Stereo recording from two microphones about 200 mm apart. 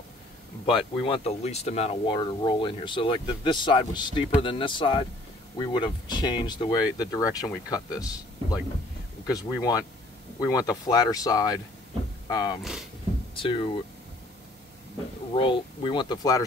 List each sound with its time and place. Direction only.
0.7 s speech: 25° left (ahead or behind)
15.3 s speech: 25° left (ahead or behind)